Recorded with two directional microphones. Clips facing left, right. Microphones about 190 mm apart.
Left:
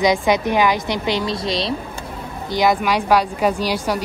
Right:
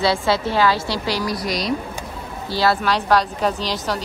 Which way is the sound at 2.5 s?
15° left (ahead or behind).